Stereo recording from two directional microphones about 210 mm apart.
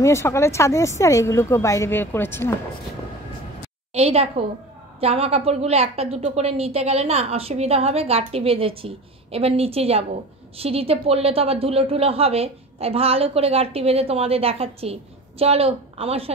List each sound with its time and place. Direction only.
0.0 s a woman's voice: 15° left (ahead or behind)
3.9 s a woman's voice: 30° right (ahead or behind)